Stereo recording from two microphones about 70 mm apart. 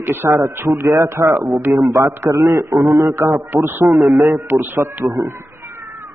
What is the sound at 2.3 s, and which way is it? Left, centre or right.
Speech, right.